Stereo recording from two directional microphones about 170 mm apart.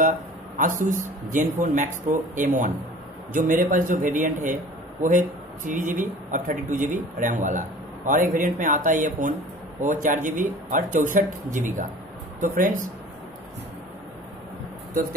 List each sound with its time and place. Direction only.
0.6 s speech: 50° right (ahead or behind)